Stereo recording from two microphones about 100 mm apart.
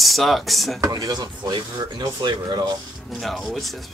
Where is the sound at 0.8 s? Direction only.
40° right (ahead or behind).